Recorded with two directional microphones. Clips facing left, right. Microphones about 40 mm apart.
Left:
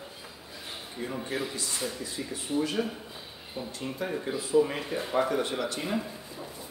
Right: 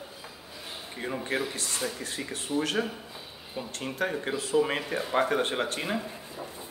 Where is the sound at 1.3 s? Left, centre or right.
Right.